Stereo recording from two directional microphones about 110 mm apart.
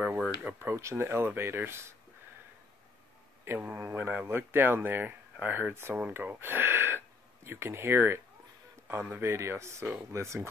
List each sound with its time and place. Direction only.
0.4 s speech: 15° right (ahead or behind)
3.4 s speech: 20° right (ahead or behind)